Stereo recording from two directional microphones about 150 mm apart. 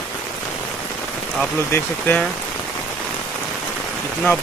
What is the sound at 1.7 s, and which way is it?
Speech, 15° left (ahead or behind).